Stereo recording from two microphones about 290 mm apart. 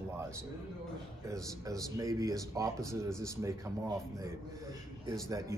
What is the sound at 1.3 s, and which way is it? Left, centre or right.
Speech, centre.